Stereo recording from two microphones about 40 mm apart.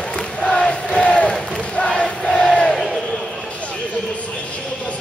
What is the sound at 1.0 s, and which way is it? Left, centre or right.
Crowd, left.